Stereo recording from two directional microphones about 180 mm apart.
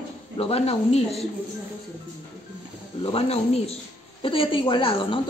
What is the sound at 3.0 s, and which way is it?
A woman's voice, 35° left (ahead or behind).